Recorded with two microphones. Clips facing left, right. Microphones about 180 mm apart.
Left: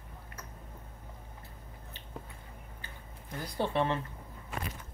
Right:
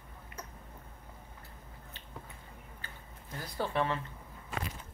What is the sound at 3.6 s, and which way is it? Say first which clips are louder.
Speech: left 2 dB; 25° left (ahead or behind).